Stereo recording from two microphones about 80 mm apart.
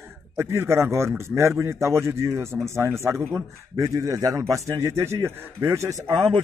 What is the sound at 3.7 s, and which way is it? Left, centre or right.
A man's voice, right.